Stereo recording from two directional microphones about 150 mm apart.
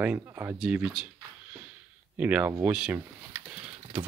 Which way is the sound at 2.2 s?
10° right (ahead or behind).